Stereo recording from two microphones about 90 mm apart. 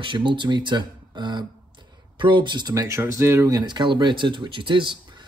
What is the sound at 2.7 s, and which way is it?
Speech, 35° right (ahead or behind).